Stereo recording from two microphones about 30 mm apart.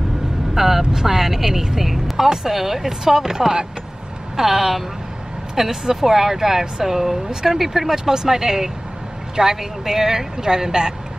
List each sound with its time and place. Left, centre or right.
0.6 s vehicle: centre
0.9 s a woman's voice: centre
7.9 s a woman's voice: centre